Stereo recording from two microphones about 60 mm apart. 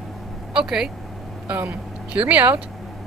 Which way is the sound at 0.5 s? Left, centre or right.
Centre.